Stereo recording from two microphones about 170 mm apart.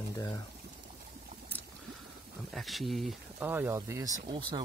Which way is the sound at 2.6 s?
Centre (ahead or behind).